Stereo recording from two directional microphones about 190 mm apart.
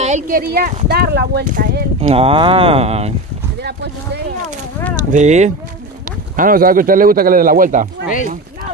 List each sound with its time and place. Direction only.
0.0 s speech: 45° right (ahead or behind)
2.0 s speech: 30° right (ahead or behind)
3.6 s speech: 60° right (ahead or behind)
4.9 s speech: 40° right (ahead or behind)